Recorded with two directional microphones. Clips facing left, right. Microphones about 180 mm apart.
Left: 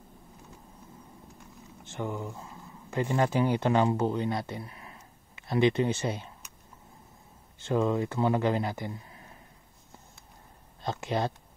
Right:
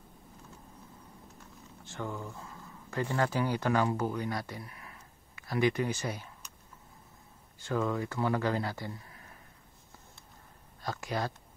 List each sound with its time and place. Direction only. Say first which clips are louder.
1.9 s speech: left 4 dB; 20° left (ahead or behind)
7.6 s speech: left 5 dB; 20° left (ahead or behind)
10.8 s speech: left 4 dB; 25° left (ahead or behind)